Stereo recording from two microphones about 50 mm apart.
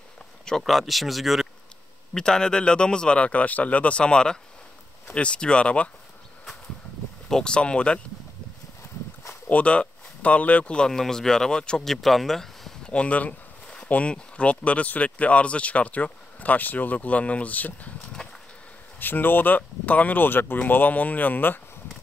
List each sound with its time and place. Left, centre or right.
0.7 s speech: centre
2.1 s speech: centre
7.2 s speech: centre
9.5 s speech: left
11.9 s speech: centre
12.8 s speech: left
18.9 s speech: left